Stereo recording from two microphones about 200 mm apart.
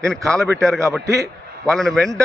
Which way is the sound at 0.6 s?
15° right (ahead or behind).